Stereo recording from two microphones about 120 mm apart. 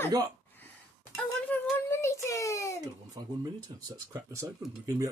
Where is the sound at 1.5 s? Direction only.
20° left (ahead or behind).